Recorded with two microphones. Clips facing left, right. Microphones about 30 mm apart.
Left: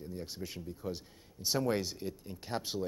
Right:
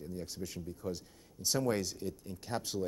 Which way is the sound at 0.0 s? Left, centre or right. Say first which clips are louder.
Even; centre.